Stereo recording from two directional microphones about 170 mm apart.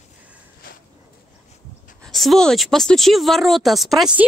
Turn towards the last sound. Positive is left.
turn(degrees=0)  # may be behind; listen again after turning